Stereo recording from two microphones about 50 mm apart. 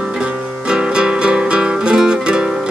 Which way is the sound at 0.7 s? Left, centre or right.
Centre.